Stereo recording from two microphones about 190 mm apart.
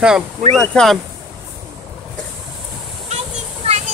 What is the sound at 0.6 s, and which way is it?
Speech, centre (ahead or behind).